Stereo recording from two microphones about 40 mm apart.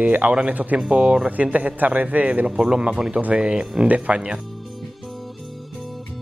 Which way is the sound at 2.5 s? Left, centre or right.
Centre.